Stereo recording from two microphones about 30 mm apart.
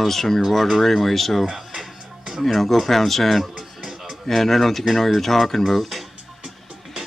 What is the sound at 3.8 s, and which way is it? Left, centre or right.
Music, centre.